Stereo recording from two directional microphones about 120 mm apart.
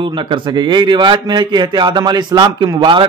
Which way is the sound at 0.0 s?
45° right (ahead or behind).